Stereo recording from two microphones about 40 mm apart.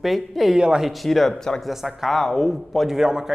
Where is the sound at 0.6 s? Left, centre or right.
Right.